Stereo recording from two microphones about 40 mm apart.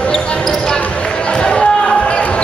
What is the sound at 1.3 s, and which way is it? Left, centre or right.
Basketball bounce, left.